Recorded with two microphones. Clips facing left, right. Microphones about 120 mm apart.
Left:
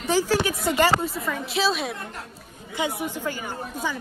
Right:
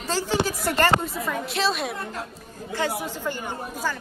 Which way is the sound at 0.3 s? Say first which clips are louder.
Left 1 dB; centre (ahead or behind).